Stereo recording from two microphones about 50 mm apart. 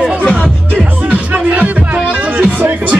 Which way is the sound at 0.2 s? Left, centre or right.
Left.